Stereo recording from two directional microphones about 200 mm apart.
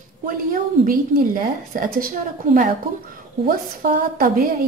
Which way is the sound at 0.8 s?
45° right (ahead or behind).